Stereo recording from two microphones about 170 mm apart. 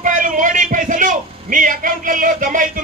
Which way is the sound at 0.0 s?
50° right (ahead or behind).